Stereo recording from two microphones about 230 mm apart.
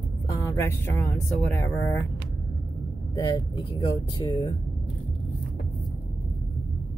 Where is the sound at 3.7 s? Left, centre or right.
Left.